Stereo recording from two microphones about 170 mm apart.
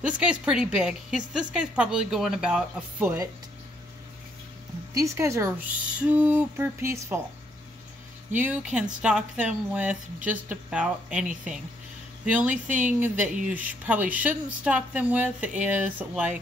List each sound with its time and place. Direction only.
0.0 s speech: 5° right (ahead or behind)
4.9 s speech: 15° right (ahead or behind)
8.3 s speech: 10° right (ahead or behind)
12.3 s speech: 10° right (ahead or behind)